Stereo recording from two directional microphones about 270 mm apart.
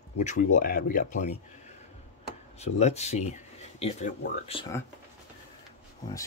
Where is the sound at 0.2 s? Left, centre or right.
Left.